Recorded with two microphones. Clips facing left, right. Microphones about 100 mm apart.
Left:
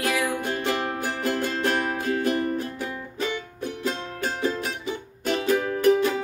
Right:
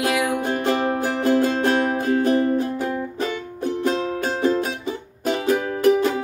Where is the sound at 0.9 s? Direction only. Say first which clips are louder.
Right 6 dB; 20° right (ahead or behind).